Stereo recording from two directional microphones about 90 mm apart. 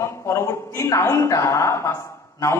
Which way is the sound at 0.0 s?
30° left (ahead or behind).